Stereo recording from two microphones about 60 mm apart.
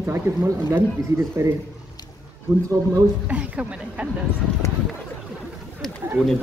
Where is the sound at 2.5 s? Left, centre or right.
Right.